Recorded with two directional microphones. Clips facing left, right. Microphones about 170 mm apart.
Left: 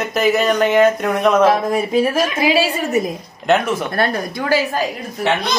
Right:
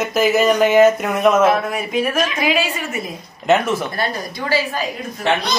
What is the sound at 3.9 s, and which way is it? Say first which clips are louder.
Speech: left 4 dB; 55° left (ahead or behind).